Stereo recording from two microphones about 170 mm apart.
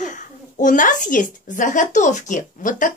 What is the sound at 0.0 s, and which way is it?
A child's voice, 45° left (ahead or behind).